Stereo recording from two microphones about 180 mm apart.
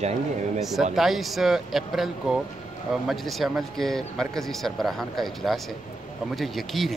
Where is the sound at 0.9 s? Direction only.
Centre (ahead or behind).